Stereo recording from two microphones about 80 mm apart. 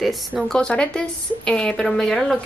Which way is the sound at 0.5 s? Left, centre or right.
Centre.